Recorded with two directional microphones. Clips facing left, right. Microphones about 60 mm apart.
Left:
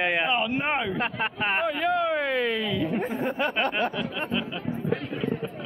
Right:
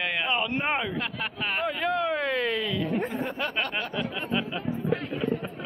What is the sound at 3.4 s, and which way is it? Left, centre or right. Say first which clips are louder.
Speech: left 7 dB; centre.